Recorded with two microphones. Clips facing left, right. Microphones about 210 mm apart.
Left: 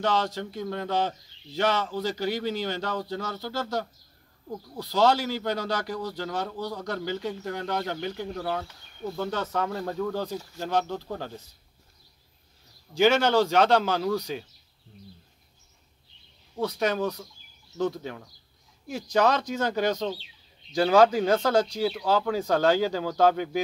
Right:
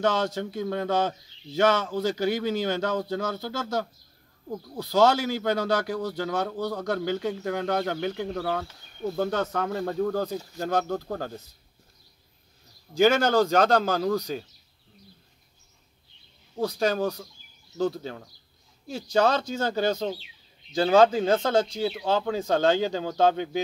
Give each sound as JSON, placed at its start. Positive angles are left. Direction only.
{"t": 0.0, "sound": "a man's voice", "side_deg": -50}
{"t": 4.8, "sound": "a man's voice", "side_deg": -50}
{"t": 12.9, "sound": "a man's voice", "side_deg": -45}
{"t": 16.5, "sound": "speech", "side_deg": -35}